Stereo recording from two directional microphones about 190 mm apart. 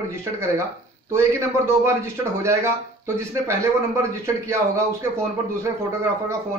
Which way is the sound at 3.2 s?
15° right (ahead or behind).